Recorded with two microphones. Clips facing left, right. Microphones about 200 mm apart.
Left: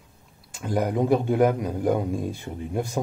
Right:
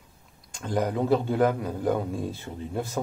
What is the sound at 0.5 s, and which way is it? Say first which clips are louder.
A man's voice: left 2 dB; 10° left (ahead or behind).